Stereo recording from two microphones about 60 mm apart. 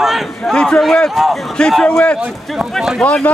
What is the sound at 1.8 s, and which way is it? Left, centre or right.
Speech, centre.